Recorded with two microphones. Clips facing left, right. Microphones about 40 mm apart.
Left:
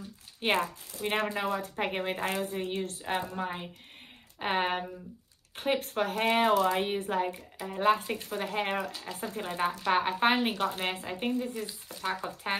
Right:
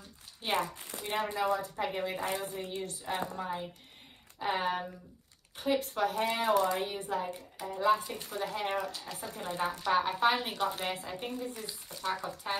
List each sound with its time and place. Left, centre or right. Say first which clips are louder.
0.4 s a woman's voice: left 4 dB; left
8.2 s a woman's voice: left 3 dB; left
9.0 s a woman's voice: left 3 dB; left
11.6 s speech: left 3 dB; centre
12.1 s a woman's voice: left 2 dB; left